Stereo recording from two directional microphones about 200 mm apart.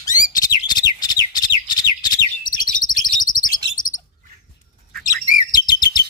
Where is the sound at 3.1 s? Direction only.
45° left (ahead or behind).